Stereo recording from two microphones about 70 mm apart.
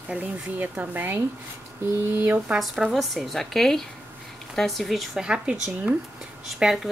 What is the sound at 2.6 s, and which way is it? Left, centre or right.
Speech, centre.